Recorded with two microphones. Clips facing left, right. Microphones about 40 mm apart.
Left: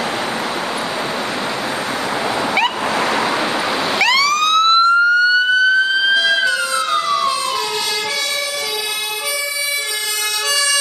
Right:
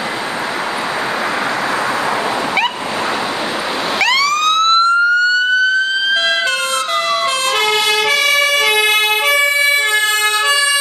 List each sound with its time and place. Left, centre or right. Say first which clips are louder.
4.0 s emergency vehicle: right 1 dB; centre
6.1 s emergency vehicle: even; right
8.4 s emergency vehicle: right 10 dB; right